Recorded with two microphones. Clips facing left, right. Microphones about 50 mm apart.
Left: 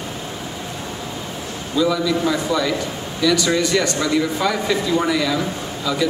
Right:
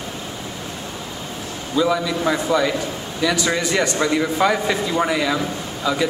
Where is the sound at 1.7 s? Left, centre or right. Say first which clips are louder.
Left 1 dB; right.